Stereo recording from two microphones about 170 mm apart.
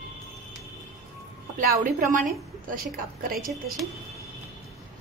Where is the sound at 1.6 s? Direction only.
50° right (ahead or behind).